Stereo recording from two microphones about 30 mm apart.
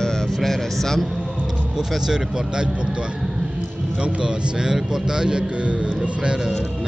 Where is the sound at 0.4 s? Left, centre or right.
Centre.